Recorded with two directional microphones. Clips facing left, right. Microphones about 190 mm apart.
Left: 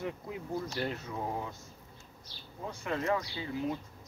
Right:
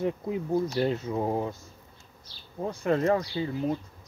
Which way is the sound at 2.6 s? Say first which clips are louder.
Right 9 dB; 40° right (ahead or behind).